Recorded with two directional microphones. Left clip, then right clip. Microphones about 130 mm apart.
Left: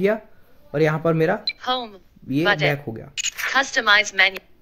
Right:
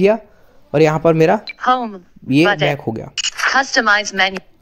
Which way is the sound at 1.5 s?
10° left (ahead or behind).